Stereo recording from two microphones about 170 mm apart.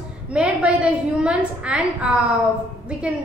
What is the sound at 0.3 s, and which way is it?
A woman's voice, 5° right (ahead or behind).